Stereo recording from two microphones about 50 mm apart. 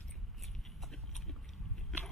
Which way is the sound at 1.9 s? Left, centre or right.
Centre.